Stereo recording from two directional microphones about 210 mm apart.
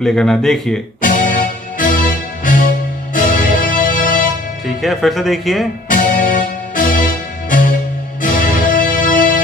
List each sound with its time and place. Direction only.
0.0 s speech: centre (ahead or behind)
1.0 s music: 40° left (ahead or behind)
4.6 s speech: centre (ahead or behind)
5.9 s music: 40° left (ahead or behind)